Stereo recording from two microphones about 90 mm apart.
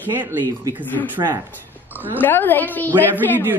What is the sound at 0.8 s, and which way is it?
Speech, 20° left (ahead or behind).